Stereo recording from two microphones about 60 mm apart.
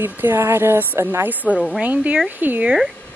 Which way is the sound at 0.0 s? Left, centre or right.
Right.